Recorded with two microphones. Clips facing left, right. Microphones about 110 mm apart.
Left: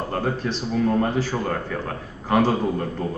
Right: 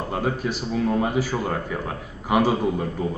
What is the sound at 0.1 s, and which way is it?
A man's voice, 10° right (ahead or behind).